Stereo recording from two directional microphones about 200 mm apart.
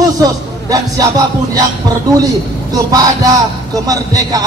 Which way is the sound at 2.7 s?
20° right (ahead or behind).